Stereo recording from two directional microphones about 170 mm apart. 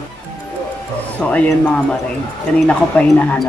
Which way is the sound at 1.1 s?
10° left (ahead or behind).